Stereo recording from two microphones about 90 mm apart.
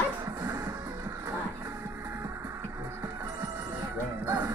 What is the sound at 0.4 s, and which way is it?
Music, 45° right (ahead or behind).